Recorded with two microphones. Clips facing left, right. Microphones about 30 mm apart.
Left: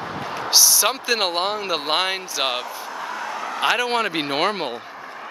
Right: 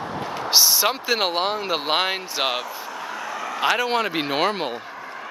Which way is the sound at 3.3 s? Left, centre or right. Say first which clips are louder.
Left 1 dB; left.